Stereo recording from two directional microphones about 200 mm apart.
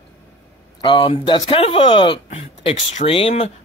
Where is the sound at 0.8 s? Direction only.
25° left (ahead or behind).